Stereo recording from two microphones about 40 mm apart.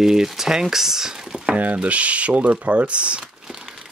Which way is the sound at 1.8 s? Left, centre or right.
Right.